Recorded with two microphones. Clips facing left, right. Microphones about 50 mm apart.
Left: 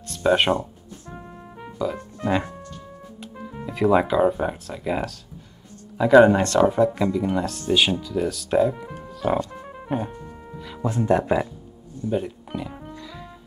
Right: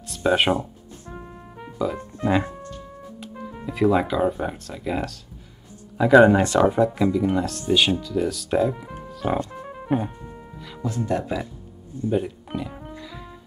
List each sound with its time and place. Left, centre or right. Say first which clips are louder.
0.1 s speech: left 1 dB; centre
1.1 s music: right 1 dB; centre
3.3 s speech: right 2 dB; centre
9.0 s music: left 2 dB; centre
10.8 s speech: left 4 dB; left
12.1 s music: right 1 dB; centre